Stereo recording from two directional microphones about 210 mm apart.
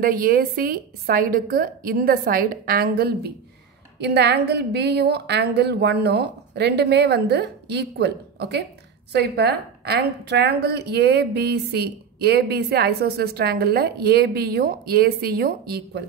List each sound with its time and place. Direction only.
0.0 s a woman's voice: 45° right (ahead or behind)